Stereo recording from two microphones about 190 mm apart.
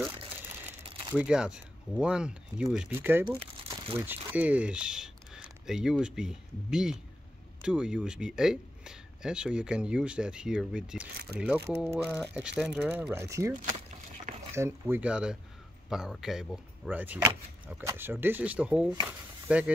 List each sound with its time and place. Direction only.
0.8 s crumpling: 30° right (ahead or behind)
1.1 s speech: 5° right (ahead or behind)
13.1 s speech: 15° right (ahead or behind)